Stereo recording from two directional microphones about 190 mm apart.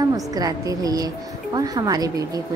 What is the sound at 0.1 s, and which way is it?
A woman's voice, 20° right (ahead or behind).